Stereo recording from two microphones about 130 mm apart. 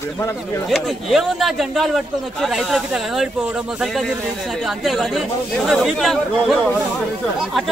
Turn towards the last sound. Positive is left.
turn(degrees=0)  # may be behind; listen again after turning